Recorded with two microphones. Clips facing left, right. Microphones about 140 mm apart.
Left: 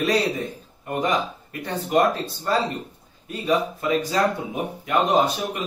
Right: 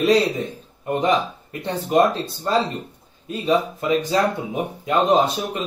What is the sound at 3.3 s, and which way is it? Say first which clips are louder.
A man's voice: right 2 dB; 20° right (ahead or behind).